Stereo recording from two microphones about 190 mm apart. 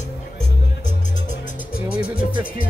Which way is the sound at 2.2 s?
50° left (ahead or behind).